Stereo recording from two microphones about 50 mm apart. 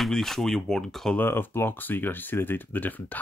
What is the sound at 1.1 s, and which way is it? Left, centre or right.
Speech, left.